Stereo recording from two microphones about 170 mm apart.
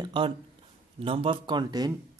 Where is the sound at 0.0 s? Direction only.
30° right (ahead or behind).